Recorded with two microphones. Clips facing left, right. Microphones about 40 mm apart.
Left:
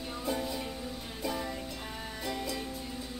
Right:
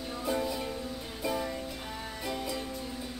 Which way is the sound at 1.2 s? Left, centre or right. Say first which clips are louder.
Right 3 dB; centre.